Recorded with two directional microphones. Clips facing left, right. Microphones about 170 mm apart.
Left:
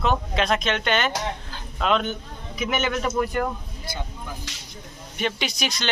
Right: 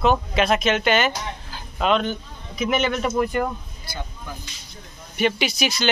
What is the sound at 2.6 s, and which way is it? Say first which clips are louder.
Speech: right 3 dB; 5° left (ahead or behind).